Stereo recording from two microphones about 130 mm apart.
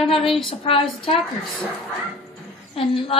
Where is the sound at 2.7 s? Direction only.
45° left (ahead or behind).